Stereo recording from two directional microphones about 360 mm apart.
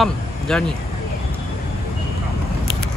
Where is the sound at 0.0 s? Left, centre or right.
Centre.